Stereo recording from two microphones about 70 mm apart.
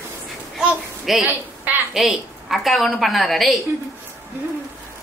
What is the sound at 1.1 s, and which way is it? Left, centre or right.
A woman's voice, centre.